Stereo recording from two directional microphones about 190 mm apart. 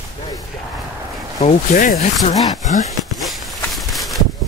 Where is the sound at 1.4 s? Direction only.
50° left (ahead or behind).